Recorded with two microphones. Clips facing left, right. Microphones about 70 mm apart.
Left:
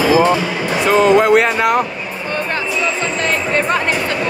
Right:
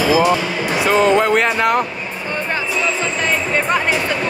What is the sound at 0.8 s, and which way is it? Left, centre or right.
Speech, centre.